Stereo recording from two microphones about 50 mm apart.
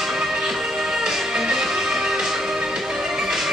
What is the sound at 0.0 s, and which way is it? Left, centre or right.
Music, centre.